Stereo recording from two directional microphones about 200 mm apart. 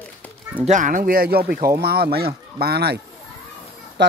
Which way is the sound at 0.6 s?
40° right (ahead or behind).